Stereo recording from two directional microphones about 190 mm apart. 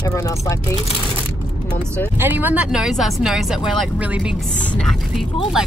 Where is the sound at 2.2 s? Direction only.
10° right (ahead or behind).